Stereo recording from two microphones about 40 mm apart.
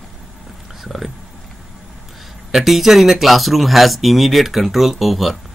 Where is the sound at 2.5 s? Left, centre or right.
Centre.